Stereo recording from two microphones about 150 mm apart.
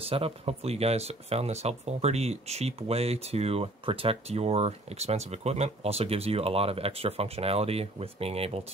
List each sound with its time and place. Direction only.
0.0 s speech: 40° right (ahead or behind)